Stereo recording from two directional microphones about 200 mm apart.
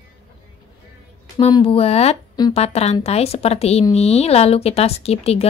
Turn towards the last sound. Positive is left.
turn(degrees=30)  # may be behind; listen again after turning